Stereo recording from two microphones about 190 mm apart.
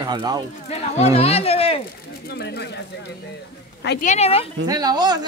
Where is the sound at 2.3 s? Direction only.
60° left (ahead or behind).